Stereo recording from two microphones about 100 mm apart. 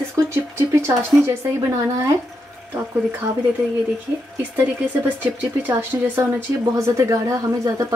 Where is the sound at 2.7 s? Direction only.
20° right (ahead or behind).